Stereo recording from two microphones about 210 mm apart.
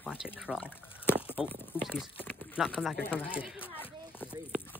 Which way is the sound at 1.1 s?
5° right (ahead or behind).